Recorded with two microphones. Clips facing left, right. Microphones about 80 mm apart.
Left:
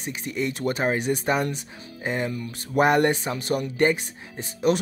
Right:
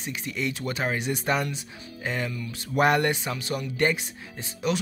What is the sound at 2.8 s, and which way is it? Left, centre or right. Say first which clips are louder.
Speech: left 2 dB; left.